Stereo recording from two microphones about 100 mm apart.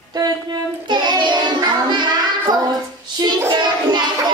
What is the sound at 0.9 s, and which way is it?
Child singing, 50° right (ahead or behind).